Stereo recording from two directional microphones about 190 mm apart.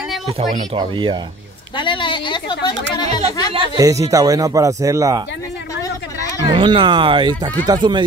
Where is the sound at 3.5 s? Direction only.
20° right (ahead or behind).